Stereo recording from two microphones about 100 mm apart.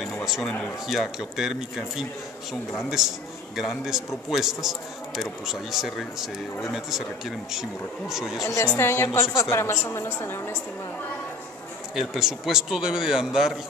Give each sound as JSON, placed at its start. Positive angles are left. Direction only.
{"t": 0.2, "sound": "speech", "side_deg": 0}
{"t": 0.8, "sound": "a man's voice", "side_deg": -5}
{"t": 8.7, "sound": "a woman's voice", "side_deg": 25}
{"t": 11.9, "sound": "a man's voice", "side_deg": -5}